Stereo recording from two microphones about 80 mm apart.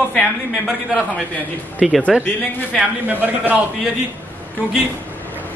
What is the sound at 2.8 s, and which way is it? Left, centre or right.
Speech, right.